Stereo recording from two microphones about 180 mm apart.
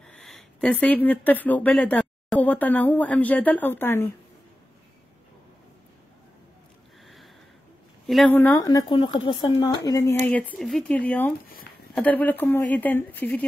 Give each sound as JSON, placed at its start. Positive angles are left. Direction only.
{"t": 0.0, "sound": "speech", "side_deg": 5}
{"t": 8.1, "sound": "speech", "side_deg": 0}
{"t": 8.4, "sound": "speech", "side_deg": 15}
{"t": 9.6, "sound": "speech", "side_deg": 15}